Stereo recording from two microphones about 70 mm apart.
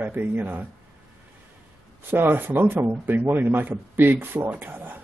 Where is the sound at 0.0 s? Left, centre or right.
Right.